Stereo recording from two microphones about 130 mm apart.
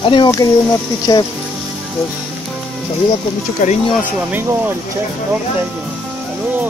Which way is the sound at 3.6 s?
90° left.